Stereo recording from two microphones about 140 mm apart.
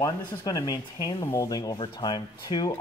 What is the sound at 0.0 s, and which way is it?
A man's voice, 25° left (ahead or behind).